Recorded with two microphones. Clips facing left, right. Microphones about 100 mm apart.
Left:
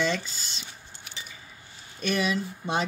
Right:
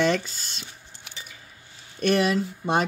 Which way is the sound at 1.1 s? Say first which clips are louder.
Even; 80° right.